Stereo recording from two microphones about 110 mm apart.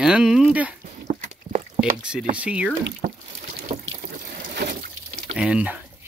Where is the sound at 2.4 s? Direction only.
10° right (ahead or behind).